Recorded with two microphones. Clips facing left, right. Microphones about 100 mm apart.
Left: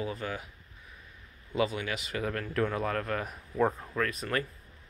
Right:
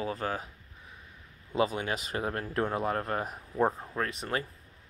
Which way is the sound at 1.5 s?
30° right (ahead or behind).